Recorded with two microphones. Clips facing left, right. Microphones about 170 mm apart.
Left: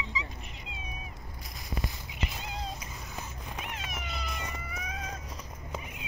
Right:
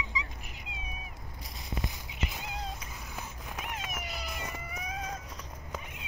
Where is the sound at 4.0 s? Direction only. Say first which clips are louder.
Even; 5° right (ahead or behind).